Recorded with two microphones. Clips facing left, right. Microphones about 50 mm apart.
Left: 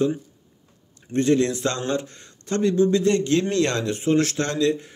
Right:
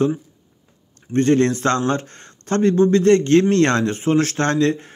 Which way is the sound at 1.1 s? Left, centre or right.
Right.